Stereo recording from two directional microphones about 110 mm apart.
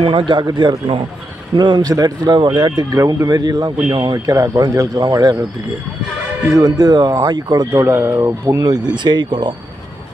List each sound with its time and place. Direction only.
0.0 s speech: 50° right (ahead or behind)
6.4 s speech: 35° right (ahead or behind)
7.7 s speech: 25° right (ahead or behind); by 9.5 s 45° right (ahead or behind)